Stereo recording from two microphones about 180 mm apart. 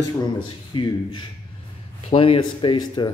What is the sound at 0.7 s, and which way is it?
Speech, 25° left (ahead or behind).